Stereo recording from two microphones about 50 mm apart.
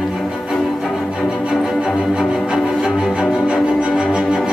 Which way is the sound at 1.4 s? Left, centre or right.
Centre.